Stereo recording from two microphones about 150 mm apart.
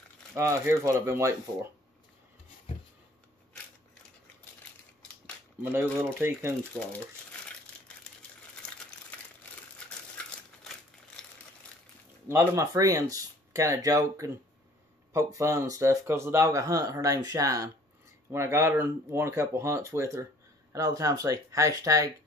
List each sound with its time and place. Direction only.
0.3 s speech: 15° right (ahead or behind)
5.6 s speech: 15° right (ahead or behind)
11.6 s a sound: 10° left (ahead or behind)
12.3 s speech: 20° right (ahead or behind)